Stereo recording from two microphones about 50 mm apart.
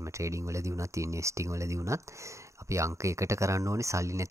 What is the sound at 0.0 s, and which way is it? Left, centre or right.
Speech, right.